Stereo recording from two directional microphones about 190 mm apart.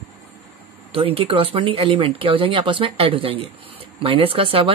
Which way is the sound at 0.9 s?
30° right (ahead or behind).